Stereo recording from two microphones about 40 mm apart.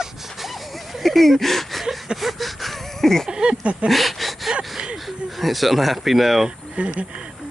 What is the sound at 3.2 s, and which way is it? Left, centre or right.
Speech, centre.